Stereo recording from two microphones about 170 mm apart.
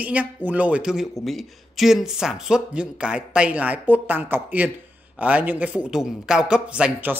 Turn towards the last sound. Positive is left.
turn(degrees=-10)  # may be behind; listen again after turning